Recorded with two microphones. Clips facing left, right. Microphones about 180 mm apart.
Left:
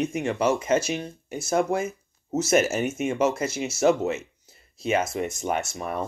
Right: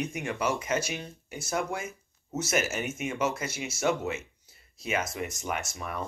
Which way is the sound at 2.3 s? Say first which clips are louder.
Left 8 dB; 35° left (ahead or behind).